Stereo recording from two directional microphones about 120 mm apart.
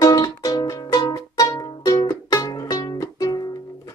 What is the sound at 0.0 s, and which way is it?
Music, 30° left (ahead or behind).